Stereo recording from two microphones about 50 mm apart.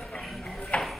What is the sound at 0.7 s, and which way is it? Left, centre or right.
Ping, left.